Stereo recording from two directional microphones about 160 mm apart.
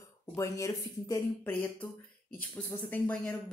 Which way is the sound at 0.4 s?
20° left (ahead or behind).